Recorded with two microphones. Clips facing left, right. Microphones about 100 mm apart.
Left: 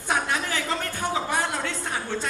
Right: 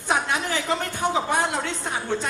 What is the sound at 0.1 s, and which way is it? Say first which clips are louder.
Speech: right 2 dB; 20° right (ahead or behind).